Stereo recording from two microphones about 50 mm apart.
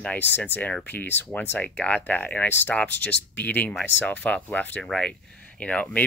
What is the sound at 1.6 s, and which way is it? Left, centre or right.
Speech, left.